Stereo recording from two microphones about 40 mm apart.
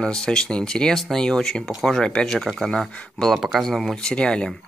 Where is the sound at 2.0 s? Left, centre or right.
Left.